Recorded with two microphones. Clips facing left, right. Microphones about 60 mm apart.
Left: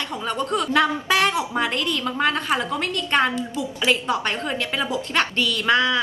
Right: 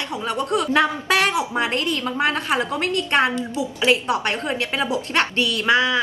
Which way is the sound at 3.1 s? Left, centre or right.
Centre.